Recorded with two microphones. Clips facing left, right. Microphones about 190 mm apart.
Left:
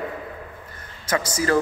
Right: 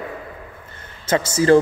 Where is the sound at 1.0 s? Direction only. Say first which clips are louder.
Right 7 dB; 25° right (ahead or behind).